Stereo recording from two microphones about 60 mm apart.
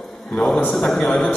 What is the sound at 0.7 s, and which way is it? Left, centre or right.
Speech, centre.